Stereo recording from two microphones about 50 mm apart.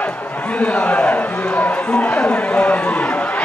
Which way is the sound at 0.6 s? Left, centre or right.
Left.